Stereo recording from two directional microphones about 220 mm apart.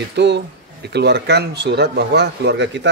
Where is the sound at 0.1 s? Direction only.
50° right (ahead or behind).